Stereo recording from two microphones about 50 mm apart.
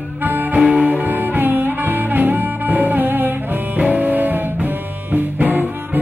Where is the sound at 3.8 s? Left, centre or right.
Right.